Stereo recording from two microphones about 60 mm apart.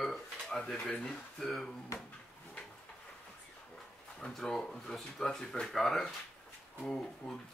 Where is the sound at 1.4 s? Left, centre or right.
Centre.